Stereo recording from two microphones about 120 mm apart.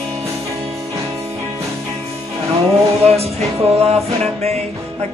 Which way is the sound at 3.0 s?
60° right (ahead or behind).